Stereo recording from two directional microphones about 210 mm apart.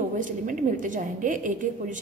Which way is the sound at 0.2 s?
40° right (ahead or behind).